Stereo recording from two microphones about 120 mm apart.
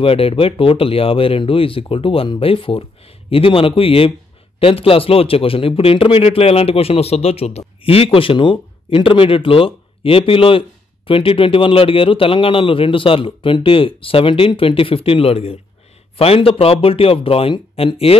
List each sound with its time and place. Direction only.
0.0 s speech: 50° left (ahead or behind)